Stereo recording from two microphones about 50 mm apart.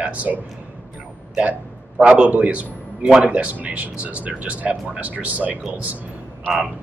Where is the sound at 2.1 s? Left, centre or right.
Right.